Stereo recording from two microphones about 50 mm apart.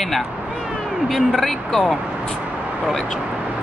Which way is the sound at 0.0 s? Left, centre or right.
Centre.